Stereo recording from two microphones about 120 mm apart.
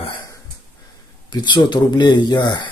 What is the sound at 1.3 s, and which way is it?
Speech, 40° left (ahead or behind).